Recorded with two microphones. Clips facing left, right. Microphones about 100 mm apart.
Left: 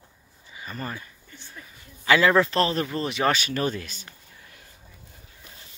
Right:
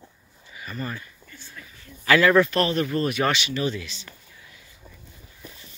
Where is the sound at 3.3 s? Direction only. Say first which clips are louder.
Even; 45° left (ahead or behind).